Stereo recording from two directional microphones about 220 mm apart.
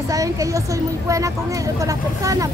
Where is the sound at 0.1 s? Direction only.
15° right (ahead or behind).